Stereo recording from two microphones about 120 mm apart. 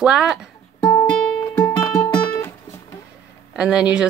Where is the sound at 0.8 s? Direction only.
30° left (ahead or behind).